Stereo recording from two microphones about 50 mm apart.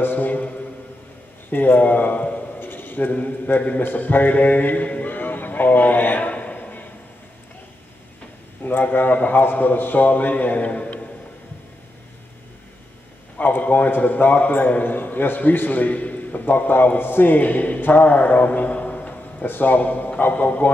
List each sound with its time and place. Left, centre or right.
0.0 s a man's voice: left
1.5 s speech: left
2.6 s a man's voice: left
3.8 s a sound: left
8.6 s a man's voice: left
13.4 s a man's voice: left
19.4 s a man's voice: left